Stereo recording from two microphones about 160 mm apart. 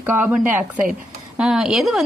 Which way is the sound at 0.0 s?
10° right (ahead or behind).